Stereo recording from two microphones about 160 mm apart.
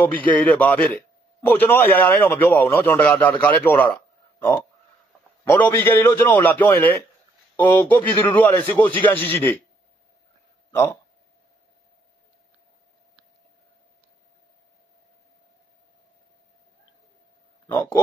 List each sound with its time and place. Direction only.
0.3 s a man's voice: 10° left (ahead or behind)
10.7 s speech: 15° left (ahead or behind)
17.6 s a man's voice: 15° left (ahead or behind)